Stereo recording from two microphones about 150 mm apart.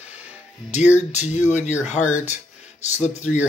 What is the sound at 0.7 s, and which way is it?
Speech, 50° left (ahead or behind).